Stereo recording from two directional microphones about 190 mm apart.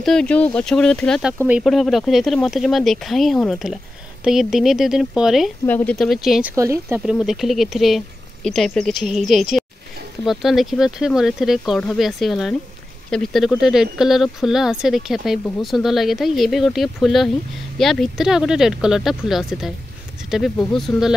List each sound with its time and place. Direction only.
0.0 s speech: 5° left (ahead or behind)
5.7 s speech: 10° left (ahead or behind)
6.5 s speech: 15° right (ahead or behind)
7.1 s speech: centre (ahead or behind)